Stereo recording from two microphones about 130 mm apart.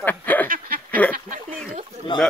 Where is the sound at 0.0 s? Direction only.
15° left (ahead or behind).